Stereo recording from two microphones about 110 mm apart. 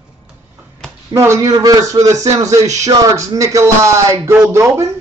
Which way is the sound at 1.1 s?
25° right (ahead or behind).